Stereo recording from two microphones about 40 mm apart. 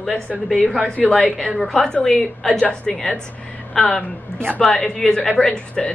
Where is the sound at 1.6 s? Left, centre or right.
Centre.